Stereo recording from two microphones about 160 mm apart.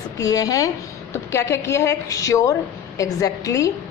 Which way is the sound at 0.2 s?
20° left (ahead or behind).